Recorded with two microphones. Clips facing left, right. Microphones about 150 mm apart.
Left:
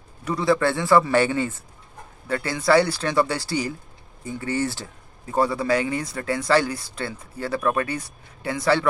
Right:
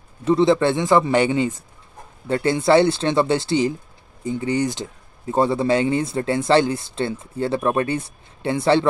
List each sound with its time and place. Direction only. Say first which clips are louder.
0.2 s speech: right 5 dB; 25° right (ahead or behind)